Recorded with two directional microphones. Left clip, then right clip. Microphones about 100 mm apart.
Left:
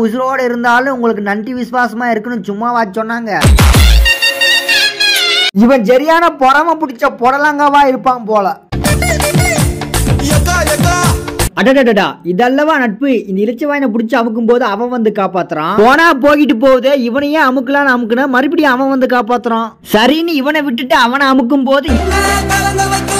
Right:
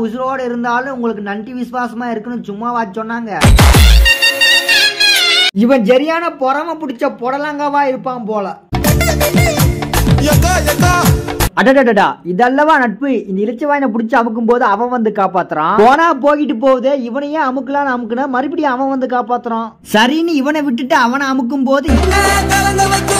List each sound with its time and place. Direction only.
0.0 s a man's voice: 50° left (ahead or behind)
2.6 s a man's voice: 40° left (ahead or behind)
3.3 s music: centre (ahead or behind)
5.9 s a man's voice: 30° left (ahead or behind)
11.5 s a man's voice: 30° left (ahead or behind)
22.1 s music: centre (ahead or behind)